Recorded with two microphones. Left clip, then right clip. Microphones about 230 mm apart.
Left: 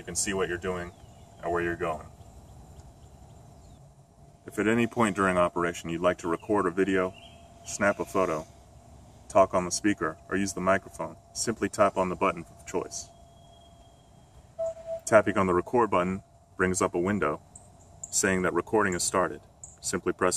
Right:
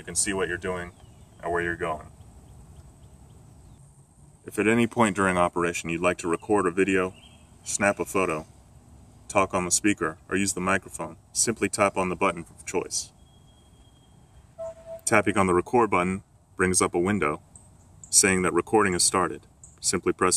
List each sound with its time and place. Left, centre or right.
0.0 s speech: centre
4.5 s speech: right
15.0 s speech: right